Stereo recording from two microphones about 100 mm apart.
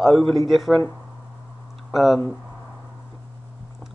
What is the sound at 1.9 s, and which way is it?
Speech, 5° right (ahead or behind).